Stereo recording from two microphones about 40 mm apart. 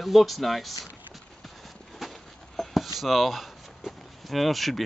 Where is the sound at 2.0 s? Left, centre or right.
Centre.